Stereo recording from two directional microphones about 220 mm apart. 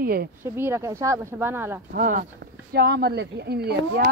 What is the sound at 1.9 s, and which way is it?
A woman's voice, 40° right (ahead or behind).